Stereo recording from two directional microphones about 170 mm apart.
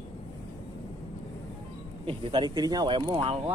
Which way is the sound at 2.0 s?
30° right (ahead or behind).